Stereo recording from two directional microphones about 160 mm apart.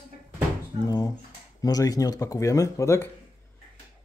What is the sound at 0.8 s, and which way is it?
Speech, 25° left (ahead or behind).